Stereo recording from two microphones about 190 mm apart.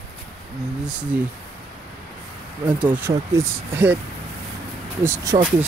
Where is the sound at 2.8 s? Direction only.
10° right (ahead or behind).